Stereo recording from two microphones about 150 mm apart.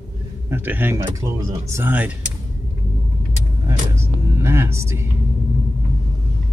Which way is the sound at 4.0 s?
15° right (ahead or behind).